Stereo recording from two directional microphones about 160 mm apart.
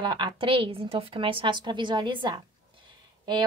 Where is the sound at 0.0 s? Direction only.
30° right (ahead or behind).